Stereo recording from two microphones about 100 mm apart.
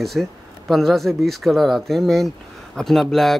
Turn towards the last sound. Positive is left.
turn(degrees=0)  # may be behind; listen again after turning